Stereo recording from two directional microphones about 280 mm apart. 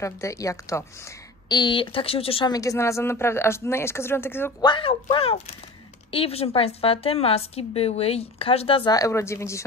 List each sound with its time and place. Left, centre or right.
0.0 s a woman's voice: centre